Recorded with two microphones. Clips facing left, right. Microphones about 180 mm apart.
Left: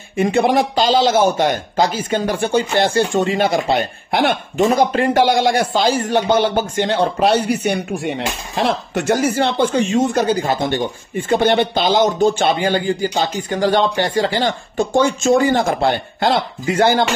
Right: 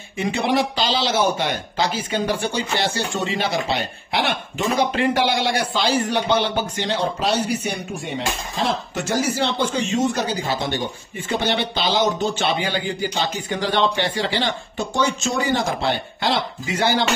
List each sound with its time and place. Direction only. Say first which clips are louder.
0.2 s speech: left 6 dB; 50° left (ahead or behind)